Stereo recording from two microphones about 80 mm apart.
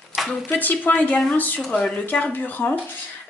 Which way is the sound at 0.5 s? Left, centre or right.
Left.